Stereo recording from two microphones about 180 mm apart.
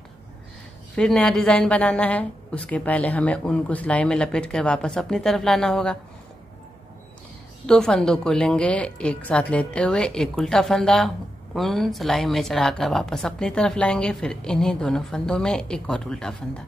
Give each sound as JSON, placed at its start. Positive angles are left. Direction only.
{"t": 0.9, "sound": "a woman's voice", "side_deg": 5}
{"t": 7.6, "sound": "a woman's voice", "side_deg": 5}